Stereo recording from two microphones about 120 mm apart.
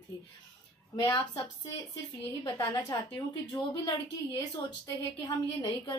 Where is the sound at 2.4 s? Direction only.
30° left (ahead or behind).